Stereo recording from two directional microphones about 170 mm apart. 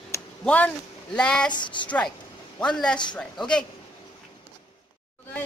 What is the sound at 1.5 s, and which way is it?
Speech, 25° left (ahead or behind).